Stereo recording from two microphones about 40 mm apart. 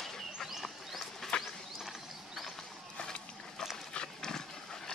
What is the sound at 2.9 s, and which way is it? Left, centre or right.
Run, left.